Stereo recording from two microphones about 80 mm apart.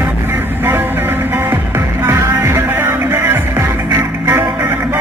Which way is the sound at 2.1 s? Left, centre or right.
Right.